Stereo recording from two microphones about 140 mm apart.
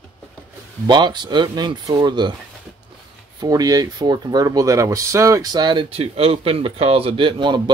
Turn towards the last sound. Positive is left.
turn(degrees=-35)  # may be behind; listen again after turning